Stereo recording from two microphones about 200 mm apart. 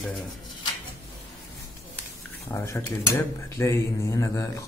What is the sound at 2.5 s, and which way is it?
Speech, 15° left (ahead or behind).